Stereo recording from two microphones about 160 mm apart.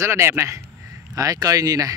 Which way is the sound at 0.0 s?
15° right (ahead or behind).